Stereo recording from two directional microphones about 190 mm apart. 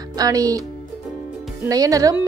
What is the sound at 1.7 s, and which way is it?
Speech, 20° right (ahead or behind).